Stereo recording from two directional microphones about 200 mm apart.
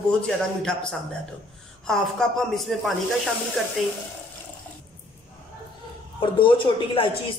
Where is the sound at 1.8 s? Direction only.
5° left (ahead or behind).